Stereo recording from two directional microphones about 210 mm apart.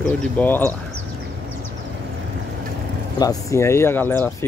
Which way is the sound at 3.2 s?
15° left (ahead or behind).